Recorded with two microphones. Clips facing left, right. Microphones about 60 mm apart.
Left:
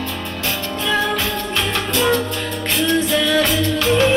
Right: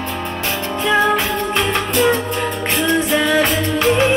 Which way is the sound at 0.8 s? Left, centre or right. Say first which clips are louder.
Right 5 dB; right.